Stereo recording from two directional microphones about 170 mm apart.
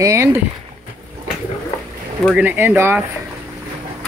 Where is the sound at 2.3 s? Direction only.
10° right (ahead or behind).